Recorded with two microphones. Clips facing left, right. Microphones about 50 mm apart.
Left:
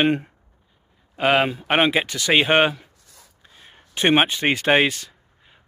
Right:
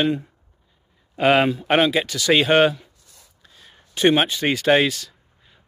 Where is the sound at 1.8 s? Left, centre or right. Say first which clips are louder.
Left 2 dB; left.